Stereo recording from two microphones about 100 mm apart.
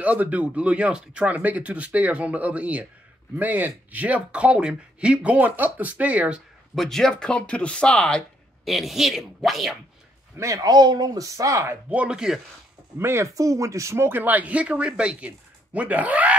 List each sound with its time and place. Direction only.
0.0 s speech: 15° right (ahead or behind)
6.7 s speech: 5° left (ahead or behind)
8.6 s speech: centre (ahead or behind)
10.3 s speech: 30° right (ahead or behind)
11.9 s speech: 10° right (ahead or behind)
13.0 s speech: 30° right (ahead or behind)